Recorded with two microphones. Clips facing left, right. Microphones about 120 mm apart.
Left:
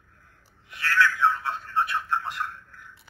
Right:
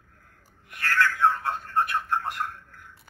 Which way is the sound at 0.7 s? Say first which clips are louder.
Left 1 dB; 50° right (ahead or behind).